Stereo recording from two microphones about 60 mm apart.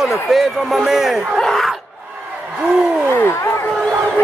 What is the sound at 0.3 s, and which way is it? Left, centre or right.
A man's voice, centre.